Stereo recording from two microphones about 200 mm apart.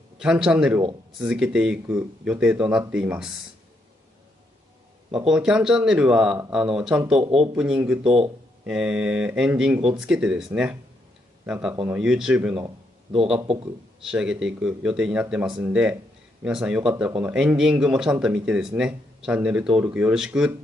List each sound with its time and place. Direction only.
0.2 s speech: 5° right (ahead or behind)
5.1 s speech: 5° right (ahead or behind)
12.6 s a sound: 25° right (ahead or behind)
14.0 s speech: 5° right (ahead or behind)